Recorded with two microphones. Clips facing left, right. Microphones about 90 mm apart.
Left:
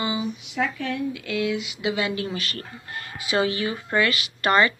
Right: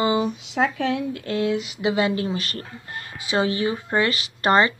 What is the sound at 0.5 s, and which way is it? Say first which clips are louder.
Speech: right 5 dB; 60° right (ahead or behind).